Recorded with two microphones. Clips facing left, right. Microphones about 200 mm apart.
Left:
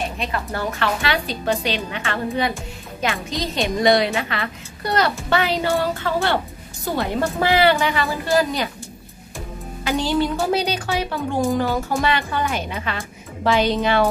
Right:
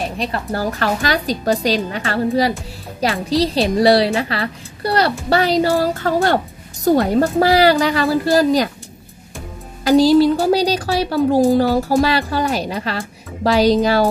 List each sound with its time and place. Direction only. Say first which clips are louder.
0.2 s a woman's voice: right 4 dB; 35° right (ahead or behind)
9.8 s a woman's voice: right 10 dB; 35° right (ahead or behind)